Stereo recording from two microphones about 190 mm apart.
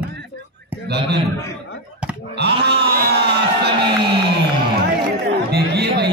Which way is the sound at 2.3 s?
60° right (ahead or behind).